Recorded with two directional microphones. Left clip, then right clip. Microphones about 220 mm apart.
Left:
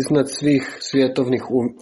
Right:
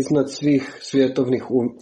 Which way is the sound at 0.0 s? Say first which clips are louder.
Left 1 dB; 20° left (ahead or behind).